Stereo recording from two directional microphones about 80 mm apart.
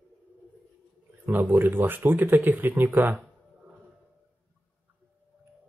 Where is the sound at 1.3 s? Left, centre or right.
Right.